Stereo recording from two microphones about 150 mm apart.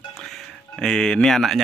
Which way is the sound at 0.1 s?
Centre (ahead or behind).